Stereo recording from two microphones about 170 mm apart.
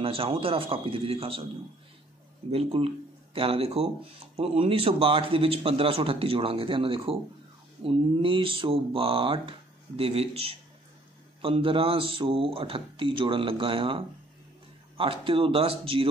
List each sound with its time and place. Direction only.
0.0 s speech: 35° right (ahead or behind)
2.5 s speech: 35° right (ahead or behind)